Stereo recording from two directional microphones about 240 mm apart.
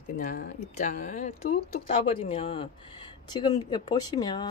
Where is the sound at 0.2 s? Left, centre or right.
Left.